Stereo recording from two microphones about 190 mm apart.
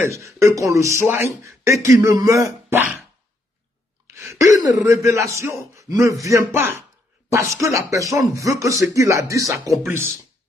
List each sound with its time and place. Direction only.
0.0 s speech: 15° right (ahead or behind)
4.1 s a sound: 15° right (ahead or behind)
4.8 s speech: 15° right (ahead or behind)